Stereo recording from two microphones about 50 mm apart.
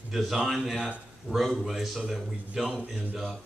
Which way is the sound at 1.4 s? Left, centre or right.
Centre.